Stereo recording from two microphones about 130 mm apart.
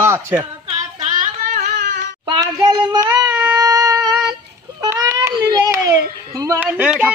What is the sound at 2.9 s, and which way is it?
Child singing, 30° right (ahead or behind).